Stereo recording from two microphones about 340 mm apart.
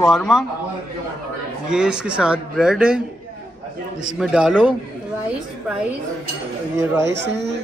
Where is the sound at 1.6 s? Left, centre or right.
Centre.